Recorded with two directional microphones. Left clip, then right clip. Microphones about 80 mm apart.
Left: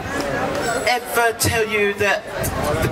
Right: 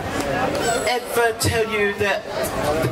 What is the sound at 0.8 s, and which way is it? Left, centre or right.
A man's voice, left.